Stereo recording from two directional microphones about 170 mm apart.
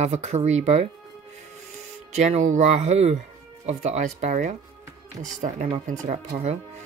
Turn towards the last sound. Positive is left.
turn(degrees=-45)  # may be behind; listen again after turning